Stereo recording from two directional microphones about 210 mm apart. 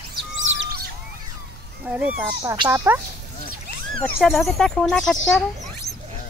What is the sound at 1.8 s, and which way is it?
Speech, 5° right (ahead or behind).